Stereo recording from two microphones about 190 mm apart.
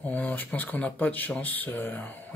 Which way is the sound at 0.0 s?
10° left (ahead or behind).